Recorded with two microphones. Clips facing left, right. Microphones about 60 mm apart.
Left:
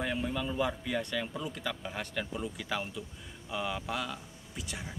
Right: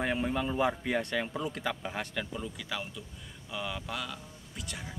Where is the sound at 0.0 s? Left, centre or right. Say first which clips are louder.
Right 3 dB; right.